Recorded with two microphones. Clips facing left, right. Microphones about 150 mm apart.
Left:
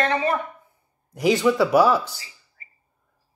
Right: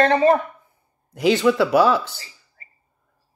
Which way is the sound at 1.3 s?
5° left (ahead or behind).